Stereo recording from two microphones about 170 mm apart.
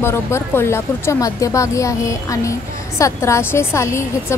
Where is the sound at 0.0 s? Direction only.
15° left (ahead or behind).